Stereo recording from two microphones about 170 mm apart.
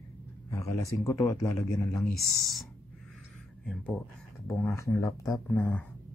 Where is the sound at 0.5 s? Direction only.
15° left (ahead or behind).